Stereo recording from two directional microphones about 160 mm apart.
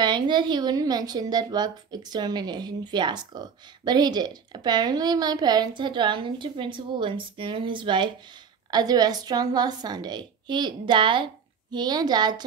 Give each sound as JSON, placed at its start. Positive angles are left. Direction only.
{"t": 0.0, "sound": "a woman's voice", "side_deg": -30}